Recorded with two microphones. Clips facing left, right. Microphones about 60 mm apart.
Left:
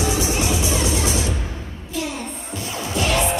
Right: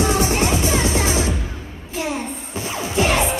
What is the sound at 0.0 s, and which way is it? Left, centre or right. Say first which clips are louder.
Music: right 3 dB; right.